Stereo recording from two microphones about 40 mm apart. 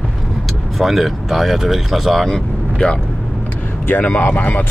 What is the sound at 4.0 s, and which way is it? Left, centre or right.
Speech, left.